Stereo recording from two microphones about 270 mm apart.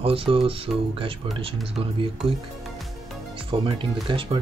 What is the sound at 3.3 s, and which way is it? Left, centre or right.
Speech, centre.